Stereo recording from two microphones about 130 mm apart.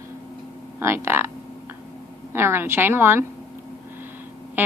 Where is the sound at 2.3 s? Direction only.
20° right (ahead or behind).